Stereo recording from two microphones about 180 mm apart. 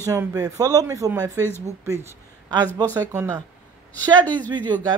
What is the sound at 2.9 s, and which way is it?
Speech, 20° right (ahead or behind).